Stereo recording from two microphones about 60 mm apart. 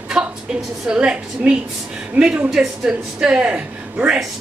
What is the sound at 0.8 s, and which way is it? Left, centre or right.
Speech, centre.